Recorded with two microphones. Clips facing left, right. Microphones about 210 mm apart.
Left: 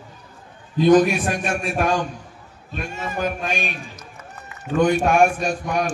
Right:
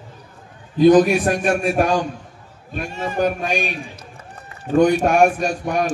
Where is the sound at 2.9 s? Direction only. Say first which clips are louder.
Right 5 dB; 30° right (ahead or behind).